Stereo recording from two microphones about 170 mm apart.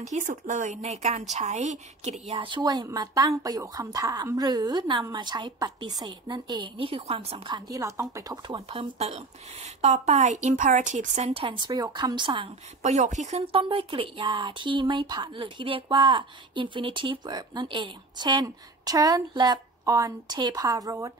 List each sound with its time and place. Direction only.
0.0 s speech: 45° right (ahead or behind); by 8.5 s 20° right (ahead or behind)
8.5 s a woman's voice: 35° right (ahead or behind)
12.8 s speech: 45° right (ahead or behind); by 21.1 s 20° right (ahead or behind)